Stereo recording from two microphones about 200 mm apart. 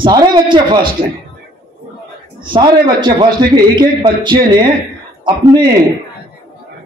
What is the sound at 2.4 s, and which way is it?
A man's voice, 25° right (ahead or behind).